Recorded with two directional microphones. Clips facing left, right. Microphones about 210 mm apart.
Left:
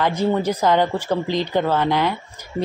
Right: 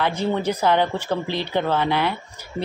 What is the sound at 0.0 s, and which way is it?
Speech, 10° left (ahead or behind).